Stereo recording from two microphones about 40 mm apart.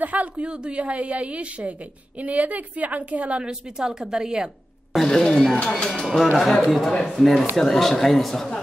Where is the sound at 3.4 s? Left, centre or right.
Centre.